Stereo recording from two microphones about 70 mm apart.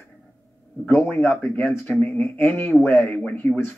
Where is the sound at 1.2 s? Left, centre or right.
Left.